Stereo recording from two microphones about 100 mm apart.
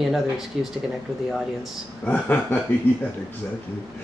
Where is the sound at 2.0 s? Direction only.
15° left (ahead or behind).